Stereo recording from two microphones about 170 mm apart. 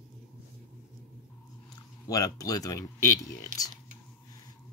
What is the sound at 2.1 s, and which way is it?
Speech, 20° left (ahead or behind).